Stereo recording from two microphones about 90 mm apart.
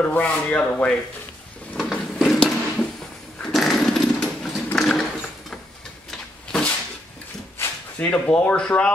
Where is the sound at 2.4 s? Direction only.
10° left (ahead or behind).